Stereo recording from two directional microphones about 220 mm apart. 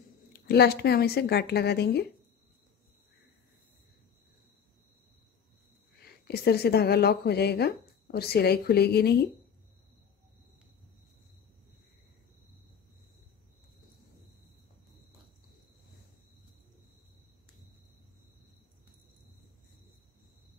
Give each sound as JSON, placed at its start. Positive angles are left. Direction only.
{"t": 0.3, "sound": "speech", "side_deg": 45}
{"t": 5.9, "sound": "a woman's voice", "side_deg": 45}